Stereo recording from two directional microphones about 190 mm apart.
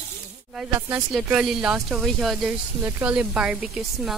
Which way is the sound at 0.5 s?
5° right (ahead or behind).